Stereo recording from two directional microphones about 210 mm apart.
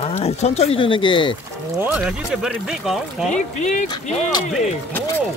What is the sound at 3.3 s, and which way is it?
Speech, 35° left (ahead or behind).